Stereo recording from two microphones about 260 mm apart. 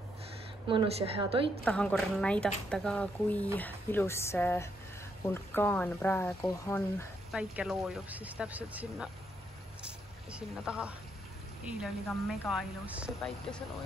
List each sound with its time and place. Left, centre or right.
0.7 s a woman's voice: right
1.6 s speech: centre
7.3 s speech: centre
9.8 s a sound: centre
11.6 s speech: centre